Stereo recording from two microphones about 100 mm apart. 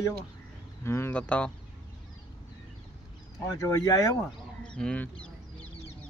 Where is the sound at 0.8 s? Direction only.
25° left (ahead or behind).